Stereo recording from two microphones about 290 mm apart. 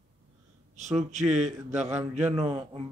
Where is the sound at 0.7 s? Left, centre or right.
Right.